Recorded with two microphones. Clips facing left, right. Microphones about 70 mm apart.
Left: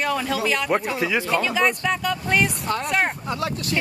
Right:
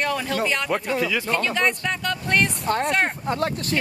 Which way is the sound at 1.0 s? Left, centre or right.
Left.